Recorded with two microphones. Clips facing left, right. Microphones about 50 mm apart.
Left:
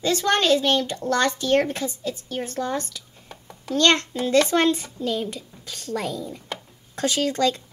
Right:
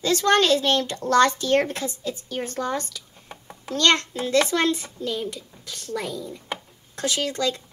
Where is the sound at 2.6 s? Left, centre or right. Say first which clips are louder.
Even; left.